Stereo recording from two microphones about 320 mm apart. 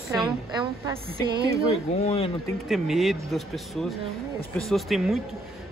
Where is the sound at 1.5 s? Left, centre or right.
Centre.